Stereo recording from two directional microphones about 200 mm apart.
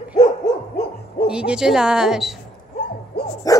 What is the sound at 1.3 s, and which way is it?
A woman's voice, 5° right (ahead or behind).